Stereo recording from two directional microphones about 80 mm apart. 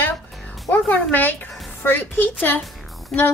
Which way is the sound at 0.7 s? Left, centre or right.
Left.